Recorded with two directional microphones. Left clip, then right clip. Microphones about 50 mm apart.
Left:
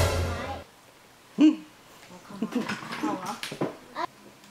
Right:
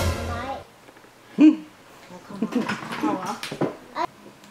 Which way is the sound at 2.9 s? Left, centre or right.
Centre.